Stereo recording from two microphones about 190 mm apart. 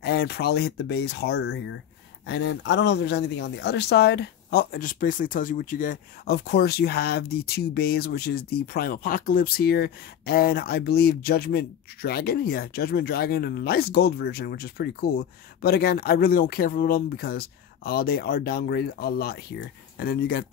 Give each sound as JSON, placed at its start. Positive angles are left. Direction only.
{"t": 0.0, "sound": "speech", "side_deg": 55}